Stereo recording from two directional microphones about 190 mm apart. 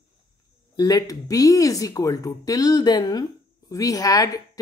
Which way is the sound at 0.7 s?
20° left (ahead or behind).